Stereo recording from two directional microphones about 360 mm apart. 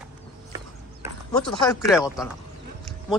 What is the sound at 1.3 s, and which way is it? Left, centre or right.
Speech, centre.